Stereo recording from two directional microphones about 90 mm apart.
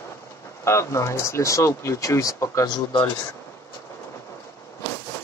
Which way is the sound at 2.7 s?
50° left (ahead or behind).